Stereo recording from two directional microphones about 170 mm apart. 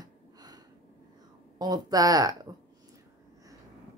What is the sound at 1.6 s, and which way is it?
Speech, 20° right (ahead or behind).